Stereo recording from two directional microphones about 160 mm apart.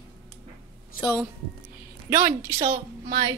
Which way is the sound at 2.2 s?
25° right (ahead or behind).